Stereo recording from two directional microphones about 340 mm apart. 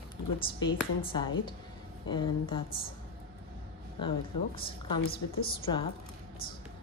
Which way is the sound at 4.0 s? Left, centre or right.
Centre.